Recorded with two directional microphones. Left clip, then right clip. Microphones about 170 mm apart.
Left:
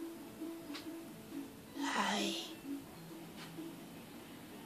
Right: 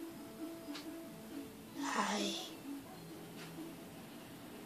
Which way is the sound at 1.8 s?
30° left (ahead or behind).